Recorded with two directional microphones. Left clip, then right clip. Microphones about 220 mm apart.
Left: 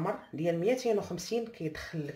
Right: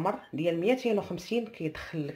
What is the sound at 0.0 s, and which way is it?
Speech, 25° right (ahead or behind).